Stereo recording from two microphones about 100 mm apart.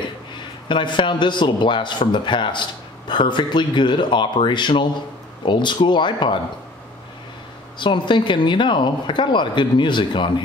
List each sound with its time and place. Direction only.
0.4 s a man's voice: 55° left (ahead or behind)
7.8 s a man's voice: 50° left (ahead or behind)